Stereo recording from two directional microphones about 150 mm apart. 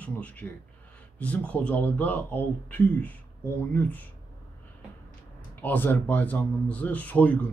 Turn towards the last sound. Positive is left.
turn(degrees=10)  # may be behind; listen again after turning